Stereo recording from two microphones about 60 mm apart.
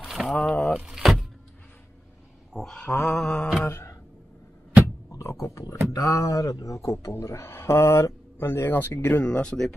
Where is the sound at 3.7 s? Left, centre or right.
Left.